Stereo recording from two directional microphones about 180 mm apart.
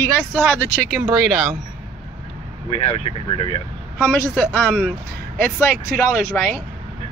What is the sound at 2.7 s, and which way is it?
Speech, 35° left (ahead or behind).